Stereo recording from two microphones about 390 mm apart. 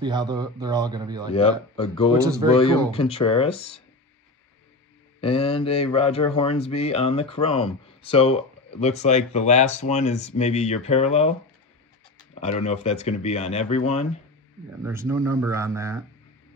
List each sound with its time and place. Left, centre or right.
0.0 s a man's voice: centre
1.3 s speech: centre
5.2 s speech: centre
12.4 s speech: centre
14.8 s a man's voice: centre